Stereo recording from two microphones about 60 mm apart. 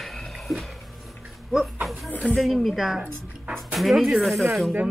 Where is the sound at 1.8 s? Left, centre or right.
Centre.